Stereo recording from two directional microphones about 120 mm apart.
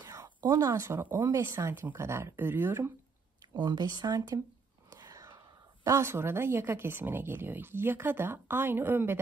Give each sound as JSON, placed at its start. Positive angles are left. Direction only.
{"t": 0.0, "sound": "a woman's voice", "side_deg": -30}
{"t": 3.5, "sound": "speech", "side_deg": -35}
{"t": 4.9, "sound": "whispering", "side_deg": -30}
{"t": 5.9, "sound": "a woman's voice", "side_deg": -20}